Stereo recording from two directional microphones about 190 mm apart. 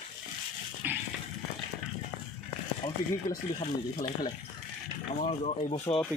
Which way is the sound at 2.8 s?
30° left (ahead or behind).